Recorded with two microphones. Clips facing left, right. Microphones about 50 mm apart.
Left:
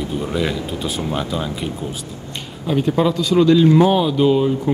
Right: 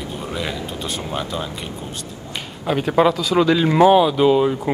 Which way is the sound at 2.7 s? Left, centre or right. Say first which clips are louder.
Right 1 dB; right.